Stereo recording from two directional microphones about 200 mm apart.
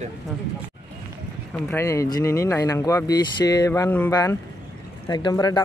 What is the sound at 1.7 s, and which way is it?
Speech, 15° left (ahead or behind).